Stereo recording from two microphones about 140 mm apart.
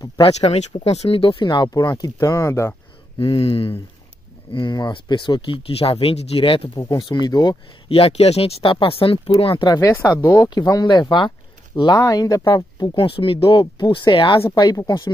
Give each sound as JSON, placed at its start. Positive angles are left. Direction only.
{"t": 0.3, "sound": "speech", "side_deg": 50}
{"t": 3.2, "sound": "speech", "side_deg": 40}
{"t": 7.9, "sound": "speech", "side_deg": 45}
{"t": 9.8, "sound": "speech", "side_deg": 20}